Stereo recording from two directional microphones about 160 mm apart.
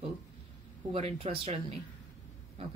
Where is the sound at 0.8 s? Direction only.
40° right (ahead or behind).